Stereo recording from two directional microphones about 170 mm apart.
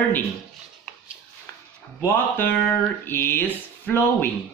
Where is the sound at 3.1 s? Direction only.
10° left (ahead or behind).